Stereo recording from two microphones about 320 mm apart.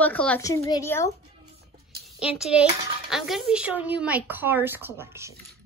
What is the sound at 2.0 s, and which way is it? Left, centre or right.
A child's voice, centre.